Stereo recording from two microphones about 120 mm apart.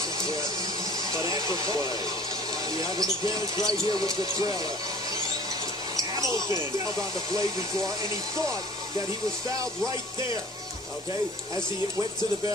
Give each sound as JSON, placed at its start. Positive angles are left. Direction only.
{"t": 0.2, "sound": "a sound", "side_deg": -30}
{"t": 2.7, "sound": "speech", "side_deg": -30}
{"t": 5.9, "sound": "speech", "side_deg": -30}